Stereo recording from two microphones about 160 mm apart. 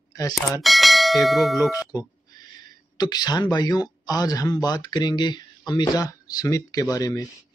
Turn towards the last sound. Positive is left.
turn(degrees=20)  # may be behind; listen again after turning